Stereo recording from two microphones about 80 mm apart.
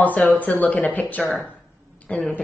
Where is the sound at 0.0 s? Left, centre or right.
Centre.